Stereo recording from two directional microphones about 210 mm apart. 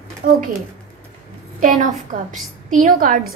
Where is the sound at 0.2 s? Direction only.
40° right (ahead or behind).